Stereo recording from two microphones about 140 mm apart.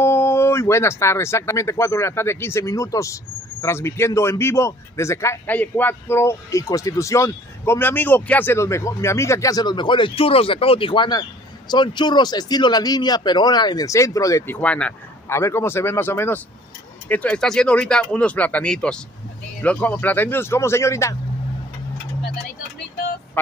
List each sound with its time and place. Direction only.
0.0 s a man's voice: 20° left (ahead or behind)
23.4 s music: 15° left (ahead or behind)